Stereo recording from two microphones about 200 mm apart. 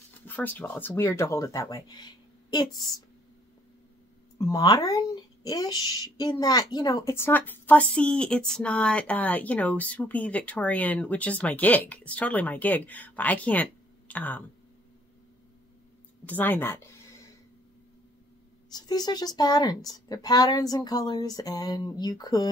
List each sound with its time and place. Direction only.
0.2 s speech: 10° left (ahead or behind)
4.4 s a child's voice: 20° left (ahead or behind)
16.3 s a child's voice: 10° left (ahead or behind)
18.7 s speech: 20° left (ahead or behind)